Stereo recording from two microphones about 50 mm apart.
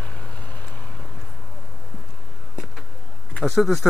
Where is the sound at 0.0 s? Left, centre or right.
Left.